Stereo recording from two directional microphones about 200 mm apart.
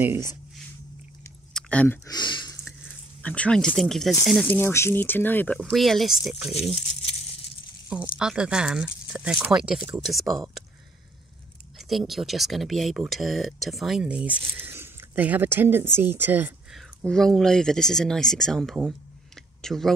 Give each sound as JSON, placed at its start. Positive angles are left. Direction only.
{"t": 0.0, "sound": "speech", "side_deg": -10}
{"t": 1.5, "sound": "chewing", "side_deg": 5}
{"t": 2.0, "sound": "speech", "side_deg": 20}
{"t": 3.2, "sound": "speech", "side_deg": 5}
{"t": 8.2, "sound": "speech", "side_deg": -5}
{"t": 12.1, "sound": "speech", "side_deg": 0}
{"t": 17.0, "sound": "speech", "side_deg": 5}